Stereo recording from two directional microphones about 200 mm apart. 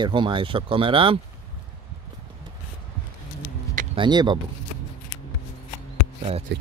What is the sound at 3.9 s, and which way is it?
Speech, 20° right (ahead or behind).